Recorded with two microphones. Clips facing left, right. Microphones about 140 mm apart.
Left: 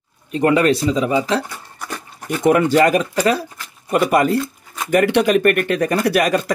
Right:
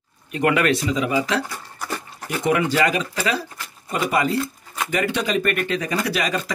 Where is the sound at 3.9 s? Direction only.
55° left (ahead or behind).